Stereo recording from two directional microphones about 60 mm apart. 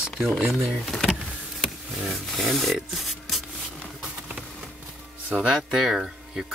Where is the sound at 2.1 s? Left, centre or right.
Centre.